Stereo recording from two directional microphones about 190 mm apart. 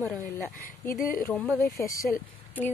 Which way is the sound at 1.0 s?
50° left (ahead or behind).